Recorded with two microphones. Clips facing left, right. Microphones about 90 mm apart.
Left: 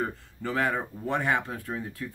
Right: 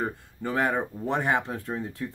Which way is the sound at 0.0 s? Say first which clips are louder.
Right 1 dB; 20° right (ahead or behind).